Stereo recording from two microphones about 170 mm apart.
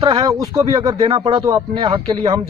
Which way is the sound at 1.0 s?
35° right (ahead or behind).